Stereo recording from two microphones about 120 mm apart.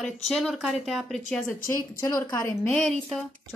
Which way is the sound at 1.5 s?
25° left (ahead or behind).